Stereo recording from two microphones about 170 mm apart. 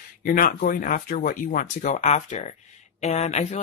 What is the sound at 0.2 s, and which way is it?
Speech, 55° left (ahead or behind).